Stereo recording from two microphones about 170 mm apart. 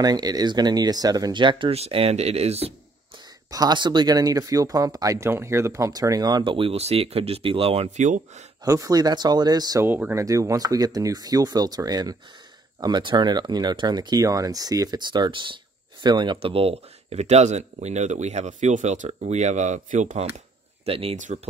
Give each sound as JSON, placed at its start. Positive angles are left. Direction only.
{"t": 0.0, "sound": "speech", "side_deg": -25}
{"t": 3.5, "sound": "speech", "side_deg": -25}
{"t": 8.6, "sound": "speech", "side_deg": -20}
{"t": 9.8, "sound": "speech", "side_deg": -10}